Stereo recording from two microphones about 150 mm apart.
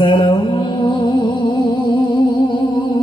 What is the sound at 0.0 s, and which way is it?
Mantra, 30° left (ahead or behind).